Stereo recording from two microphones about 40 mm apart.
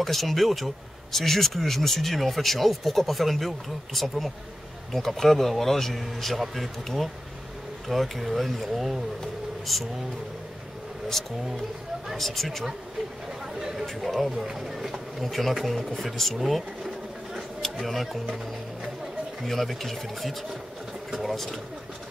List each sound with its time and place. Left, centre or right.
0.0 s speech: centre
11.2 s speech: centre
13.6 s a sound: centre
14.0 s speech: centre
19.4 s speech: centre